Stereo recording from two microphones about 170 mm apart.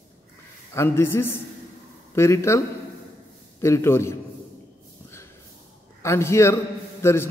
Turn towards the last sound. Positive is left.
turn(degrees=15)  # may be behind; listen again after turning